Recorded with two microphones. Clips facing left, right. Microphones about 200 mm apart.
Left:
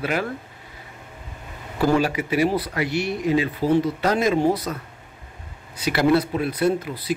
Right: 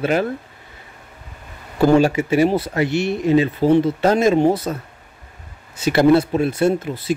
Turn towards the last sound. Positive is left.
turn(degrees=-25)  # may be behind; listen again after turning